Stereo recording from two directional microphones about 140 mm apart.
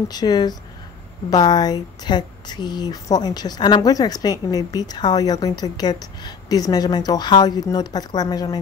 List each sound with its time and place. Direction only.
0.1 s speech: 30° left (ahead or behind)